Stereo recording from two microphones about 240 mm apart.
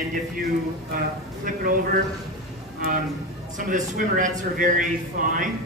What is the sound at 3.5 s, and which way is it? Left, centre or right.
Speech, right.